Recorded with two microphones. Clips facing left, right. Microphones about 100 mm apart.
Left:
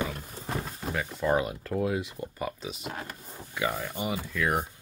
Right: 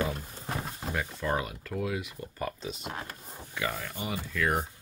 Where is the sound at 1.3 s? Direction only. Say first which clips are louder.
Left 6 dB; 25° left (ahead or behind).